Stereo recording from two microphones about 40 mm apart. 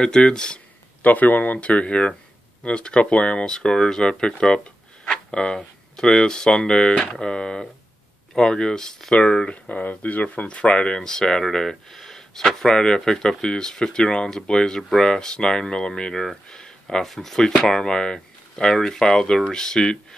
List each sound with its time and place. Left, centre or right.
0.0 s speech: centre
1.0 s speech: left
3.4 s speech: centre
5.0 s a sound: left
5.9 s speech: centre
9.1 s speech: left
11.0 s speech: centre
16.4 s a sound: left
17.0 s speech: centre
17.4 s speech: centre